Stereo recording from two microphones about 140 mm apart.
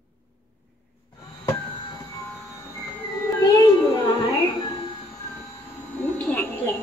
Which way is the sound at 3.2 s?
25° left (ahead or behind).